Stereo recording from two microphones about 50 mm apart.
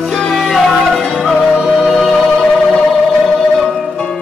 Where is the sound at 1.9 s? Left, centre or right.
Centre.